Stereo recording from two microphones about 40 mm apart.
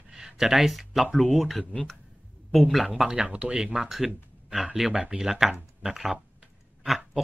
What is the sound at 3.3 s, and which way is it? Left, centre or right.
Speech, right.